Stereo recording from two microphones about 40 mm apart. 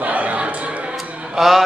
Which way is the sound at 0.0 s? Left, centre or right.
Right.